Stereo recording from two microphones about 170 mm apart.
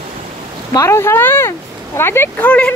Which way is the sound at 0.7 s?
15° left (ahead or behind).